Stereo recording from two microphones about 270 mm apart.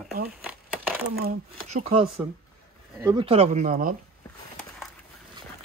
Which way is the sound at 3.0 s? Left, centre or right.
Centre.